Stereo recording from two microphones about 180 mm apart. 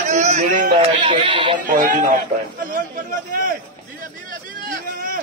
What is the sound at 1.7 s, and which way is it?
A man's voice, 50° right (ahead or behind).